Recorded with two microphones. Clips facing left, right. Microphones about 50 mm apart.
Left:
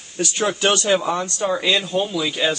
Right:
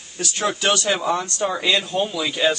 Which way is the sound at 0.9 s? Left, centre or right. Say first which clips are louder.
Left 2 dB; centre.